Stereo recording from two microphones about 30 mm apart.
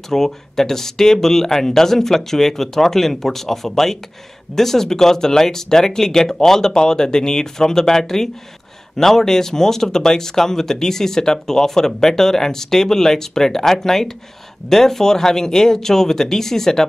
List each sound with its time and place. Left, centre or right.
0.1 s speech: centre